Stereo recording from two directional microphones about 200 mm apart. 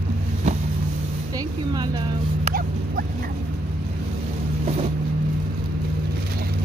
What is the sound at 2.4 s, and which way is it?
Dog, 45° right (ahead or behind).